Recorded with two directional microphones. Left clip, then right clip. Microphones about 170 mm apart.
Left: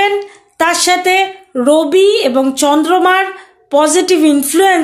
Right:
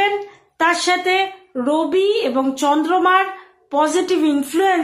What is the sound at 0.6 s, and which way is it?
A woman's voice, 40° left (ahead or behind).